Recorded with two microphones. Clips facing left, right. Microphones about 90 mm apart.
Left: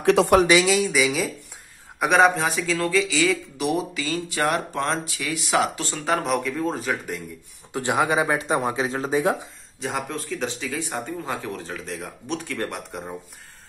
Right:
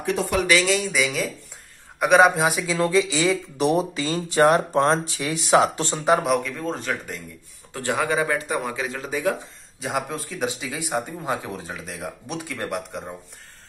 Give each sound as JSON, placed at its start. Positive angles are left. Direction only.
{"t": 0.0, "sound": "speech", "side_deg": 90}
{"t": 0.7, "sound": "speech", "side_deg": 0}
{"t": 6.0, "sound": "speech", "side_deg": -5}
{"t": 7.7, "sound": "speech", "side_deg": 20}
{"t": 9.8, "sound": "speech", "side_deg": -5}